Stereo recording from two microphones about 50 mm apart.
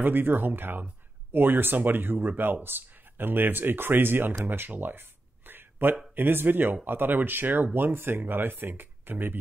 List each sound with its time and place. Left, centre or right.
0.0 s speech: right